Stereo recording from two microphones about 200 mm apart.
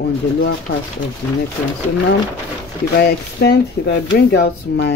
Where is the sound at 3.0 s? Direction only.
55° left (ahead or behind).